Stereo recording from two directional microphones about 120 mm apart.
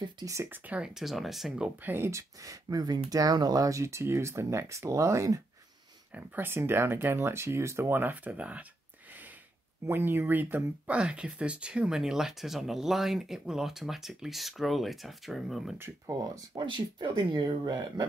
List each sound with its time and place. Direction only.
0.0 s speech: 30° right (ahead or behind); by 1.7 s centre (ahead or behind)
1.8 s speech: 15° right (ahead or behind)
6.1 s speech: 15° right (ahead or behind)
9.8 s speech: 20° right (ahead or behind); by 15.7 s centre (ahead or behind)
16.1 s speech: 30° right (ahead or behind)